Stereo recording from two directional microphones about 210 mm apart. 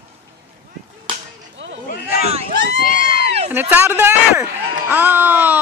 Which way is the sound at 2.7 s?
40° left (ahead or behind).